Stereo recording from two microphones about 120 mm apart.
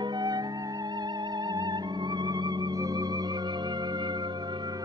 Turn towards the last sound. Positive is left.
turn(degrees=-30)  # may be behind; listen again after turning